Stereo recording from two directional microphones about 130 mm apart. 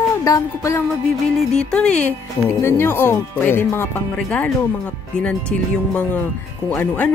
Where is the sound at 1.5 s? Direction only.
5° left (ahead or behind).